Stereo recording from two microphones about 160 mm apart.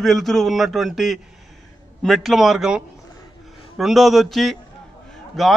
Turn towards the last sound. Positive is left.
turn(degrees=0)  # may be behind; listen again after turning